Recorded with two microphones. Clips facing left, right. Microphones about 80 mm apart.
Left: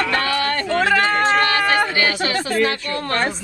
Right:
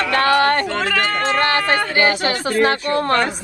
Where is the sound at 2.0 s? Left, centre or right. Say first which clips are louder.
Right 3 dB; right.